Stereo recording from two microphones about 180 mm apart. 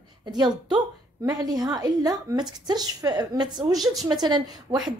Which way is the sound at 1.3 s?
20° right (ahead or behind).